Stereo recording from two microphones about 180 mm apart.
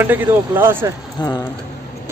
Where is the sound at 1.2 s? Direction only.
20° left (ahead or behind).